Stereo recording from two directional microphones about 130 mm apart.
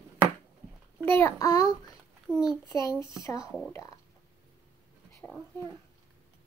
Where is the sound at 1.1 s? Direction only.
15° left (ahead or behind).